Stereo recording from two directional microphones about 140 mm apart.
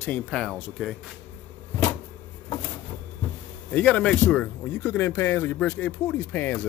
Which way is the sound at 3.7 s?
10° left (ahead or behind).